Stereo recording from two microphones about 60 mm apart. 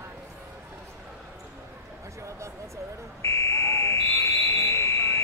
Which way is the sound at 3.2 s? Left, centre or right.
Left.